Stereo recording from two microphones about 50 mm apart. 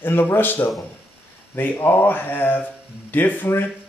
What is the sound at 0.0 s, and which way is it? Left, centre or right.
Speech, left.